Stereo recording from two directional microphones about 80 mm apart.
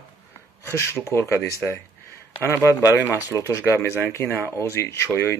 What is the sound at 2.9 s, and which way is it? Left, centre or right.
Speech, left.